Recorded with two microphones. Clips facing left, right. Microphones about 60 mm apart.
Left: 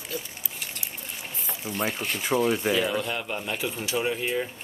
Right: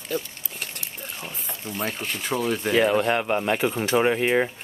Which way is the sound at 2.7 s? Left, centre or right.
Right.